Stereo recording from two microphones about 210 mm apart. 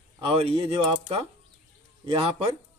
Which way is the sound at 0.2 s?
25° right (ahead or behind).